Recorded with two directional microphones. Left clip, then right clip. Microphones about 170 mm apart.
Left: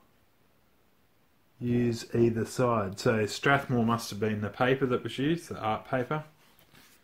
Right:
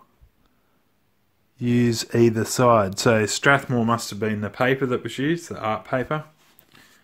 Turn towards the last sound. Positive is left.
turn(degrees=-30)  # may be behind; listen again after turning